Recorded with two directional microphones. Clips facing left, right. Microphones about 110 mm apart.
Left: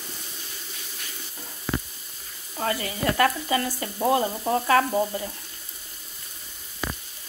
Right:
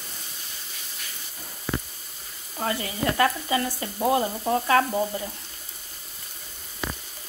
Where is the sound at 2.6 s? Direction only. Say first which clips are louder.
Left 1 dB; 25° right (ahead or behind).